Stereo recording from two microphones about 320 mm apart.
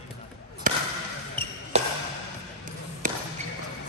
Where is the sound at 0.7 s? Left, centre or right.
Right.